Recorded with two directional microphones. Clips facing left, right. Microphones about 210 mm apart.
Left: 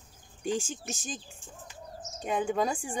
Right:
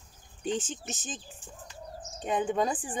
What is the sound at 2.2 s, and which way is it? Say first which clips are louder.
Speech: right 1 dB; 10° left (ahead or behind).